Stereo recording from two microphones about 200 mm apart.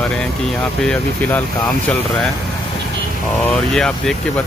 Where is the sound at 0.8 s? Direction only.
10° left (ahead or behind).